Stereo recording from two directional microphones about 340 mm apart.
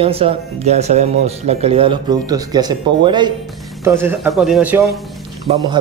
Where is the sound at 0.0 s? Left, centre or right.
Centre.